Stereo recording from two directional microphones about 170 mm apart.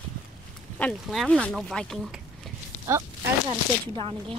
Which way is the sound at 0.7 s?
5° left (ahead or behind).